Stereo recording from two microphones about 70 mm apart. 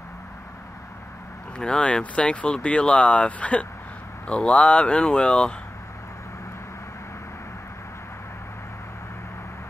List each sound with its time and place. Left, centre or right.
1.6 s speech: centre